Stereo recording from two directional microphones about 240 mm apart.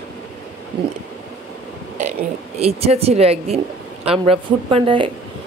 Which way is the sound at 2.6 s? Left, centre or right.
Right.